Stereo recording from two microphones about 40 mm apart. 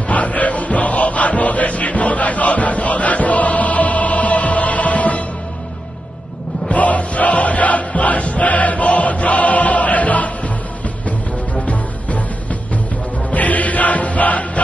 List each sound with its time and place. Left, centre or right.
0.1 s chant: left
6.7 s music: left